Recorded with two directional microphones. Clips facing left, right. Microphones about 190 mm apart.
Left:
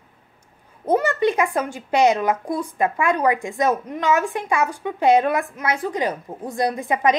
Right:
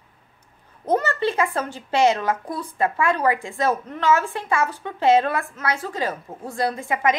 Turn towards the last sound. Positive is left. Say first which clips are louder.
# left 2 dB
turn(degrees=20)  # may be behind; listen again after turning